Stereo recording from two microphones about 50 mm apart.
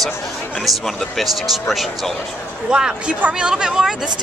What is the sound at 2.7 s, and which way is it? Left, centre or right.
Speech, centre.